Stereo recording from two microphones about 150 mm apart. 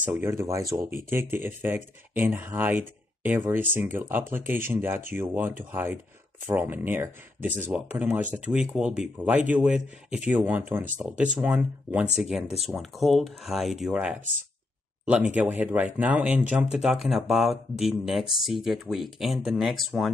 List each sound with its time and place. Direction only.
0.0 s speech: 15° right (ahead or behind)
15.3 s speech: 10° right (ahead or behind)